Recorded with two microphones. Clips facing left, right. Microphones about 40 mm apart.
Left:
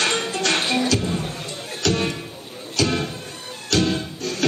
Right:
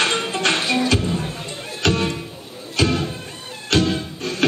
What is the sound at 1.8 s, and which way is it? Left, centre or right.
Music, right.